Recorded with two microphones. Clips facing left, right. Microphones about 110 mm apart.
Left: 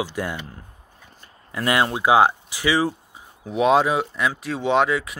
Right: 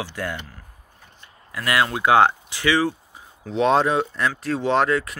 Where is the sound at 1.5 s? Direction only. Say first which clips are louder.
Left 1 dB; 30° left (ahead or behind).